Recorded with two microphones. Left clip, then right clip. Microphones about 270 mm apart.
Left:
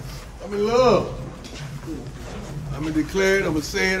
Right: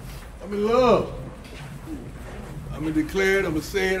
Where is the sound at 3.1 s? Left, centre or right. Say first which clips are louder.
Left 2 dB; centre.